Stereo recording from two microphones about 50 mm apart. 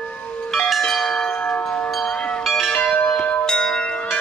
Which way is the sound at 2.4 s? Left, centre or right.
Centre.